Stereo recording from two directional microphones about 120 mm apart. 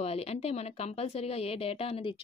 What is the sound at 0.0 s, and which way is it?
Speech, 60° left (ahead or behind).